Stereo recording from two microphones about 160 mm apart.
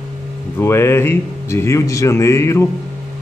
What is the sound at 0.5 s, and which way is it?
Speech, 15° left (ahead or behind).